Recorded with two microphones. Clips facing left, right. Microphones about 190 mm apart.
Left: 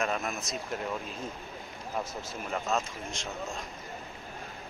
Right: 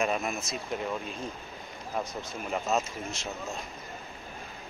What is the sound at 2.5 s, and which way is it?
Speech, 5° right (ahead or behind).